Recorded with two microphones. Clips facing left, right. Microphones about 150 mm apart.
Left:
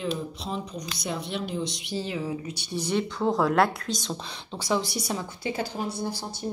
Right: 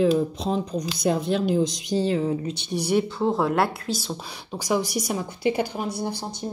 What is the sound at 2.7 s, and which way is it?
Speech, 10° right (ahead or behind).